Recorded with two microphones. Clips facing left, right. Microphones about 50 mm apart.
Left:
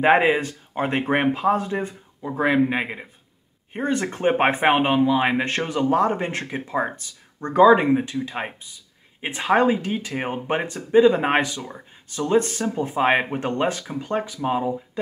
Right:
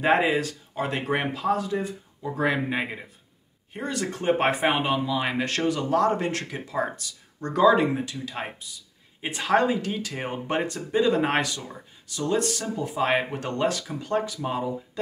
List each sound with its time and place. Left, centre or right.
0.0 s speech: left
2.2 s speech: centre
3.7 s speech: left
12.1 s speech: left